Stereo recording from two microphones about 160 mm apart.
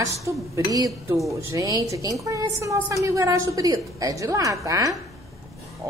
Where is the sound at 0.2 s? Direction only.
20° right (ahead or behind).